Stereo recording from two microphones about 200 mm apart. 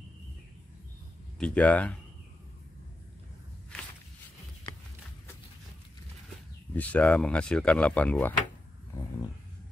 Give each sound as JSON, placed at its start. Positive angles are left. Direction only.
{"t": 1.4, "sound": "speech", "side_deg": 5}
{"t": 6.7, "sound": "speech", "side_deg": 10}